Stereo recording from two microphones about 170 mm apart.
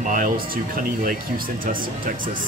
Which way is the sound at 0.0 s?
50° right (ahead or behind).